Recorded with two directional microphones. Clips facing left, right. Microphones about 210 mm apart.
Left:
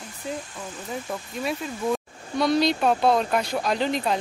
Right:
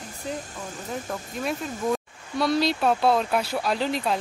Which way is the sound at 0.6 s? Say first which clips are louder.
Even; 45° right (ahead or behind).